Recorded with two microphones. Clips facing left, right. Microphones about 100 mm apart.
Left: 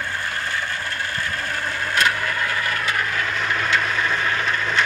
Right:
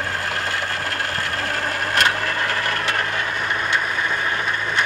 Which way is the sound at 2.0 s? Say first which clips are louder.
Right 1 dB; 30° right (ahead or behind).